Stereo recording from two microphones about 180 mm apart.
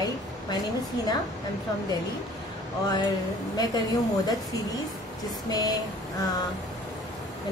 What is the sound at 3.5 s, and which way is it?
Speech, 20° left (ahead or behind).